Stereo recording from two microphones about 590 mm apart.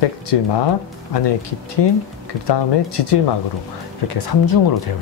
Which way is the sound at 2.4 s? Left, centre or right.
Left.